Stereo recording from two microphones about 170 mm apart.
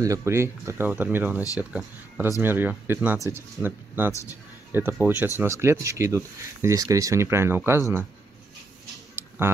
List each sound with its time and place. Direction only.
0.0 s speech: 20° right (ahead or behind)
9.4 s speech: 15° right (ahead or behind)